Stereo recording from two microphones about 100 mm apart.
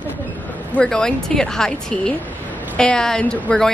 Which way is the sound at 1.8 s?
10° left (ahead or behind).